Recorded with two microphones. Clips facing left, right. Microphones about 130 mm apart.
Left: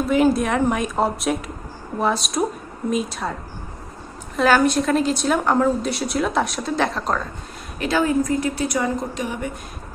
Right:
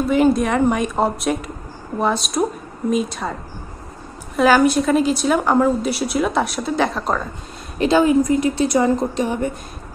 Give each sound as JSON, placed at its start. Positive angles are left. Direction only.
{"t": 0.0, "sound": "a woman's voice", "side_deg": 0}
{"t": 4.4, "sound": "a woman's voice", "side_deg": -5}
{"t": 7.8, "sound": "a woman's voice", "side_deg": -20}